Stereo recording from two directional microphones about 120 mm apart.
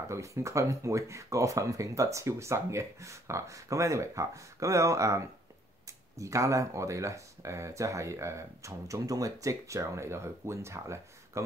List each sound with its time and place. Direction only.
0.1 s speech: 25° right (ahead or behind)